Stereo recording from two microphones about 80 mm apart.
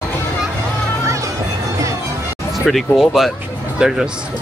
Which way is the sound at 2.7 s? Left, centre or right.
Centre.